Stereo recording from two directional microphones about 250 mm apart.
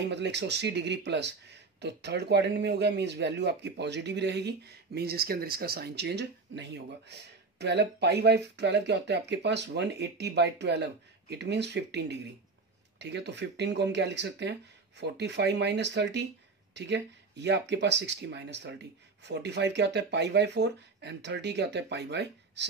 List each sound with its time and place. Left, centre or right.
0.1 s speech: right